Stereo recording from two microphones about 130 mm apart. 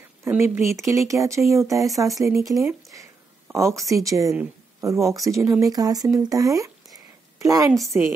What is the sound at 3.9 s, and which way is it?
Speech, 25° right (ahead or behind).